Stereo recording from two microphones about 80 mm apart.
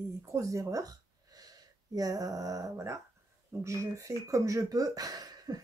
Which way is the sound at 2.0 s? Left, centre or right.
Right.